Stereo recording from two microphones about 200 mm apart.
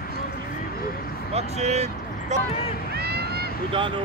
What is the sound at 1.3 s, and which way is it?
Vehicle, 35° right (ahead or behind).